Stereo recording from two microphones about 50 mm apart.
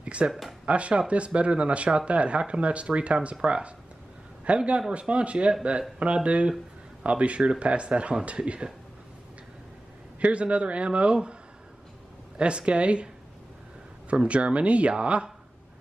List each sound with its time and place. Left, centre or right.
0.0 s a sound: right
0.3 s speech: centre
0.7 s speech: right
10.2 s speech: right
12.4 s speech: right
14.1 s speech: right